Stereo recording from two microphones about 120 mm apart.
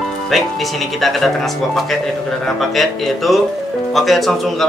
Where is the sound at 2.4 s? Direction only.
Centre (ahead or behind).